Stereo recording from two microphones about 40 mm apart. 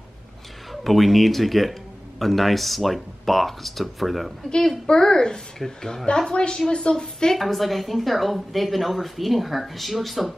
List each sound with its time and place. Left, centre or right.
0.8 s speech: centre
4.8 s a woman's voice: centre
5.6 s speech: centre
6.0 s a woman's voice: centre
6.3 s a woman's voice: left
7.3 s speech: centre